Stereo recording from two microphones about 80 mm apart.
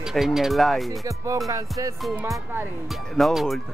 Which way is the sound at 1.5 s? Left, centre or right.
Right.